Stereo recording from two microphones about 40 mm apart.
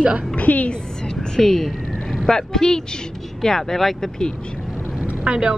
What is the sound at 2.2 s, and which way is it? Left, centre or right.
Speech, centre.